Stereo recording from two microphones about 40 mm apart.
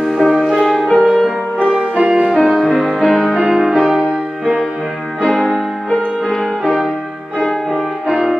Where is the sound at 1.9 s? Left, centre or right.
Right.